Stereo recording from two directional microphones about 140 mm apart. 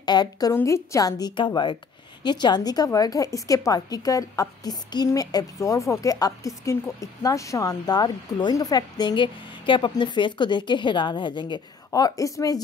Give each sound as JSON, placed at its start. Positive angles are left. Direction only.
{"t": 0.0, "sound": "a woman's voice", "side_deg": 30}